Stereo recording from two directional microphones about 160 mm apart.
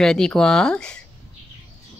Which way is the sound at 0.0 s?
5° left (ahead or behind).